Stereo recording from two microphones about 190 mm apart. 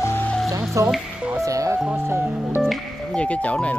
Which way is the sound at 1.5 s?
15° right (ahead or behind).